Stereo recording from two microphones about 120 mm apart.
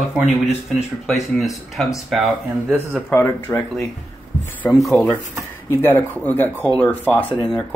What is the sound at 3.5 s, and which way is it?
Speech, 20° left (ahead or behind).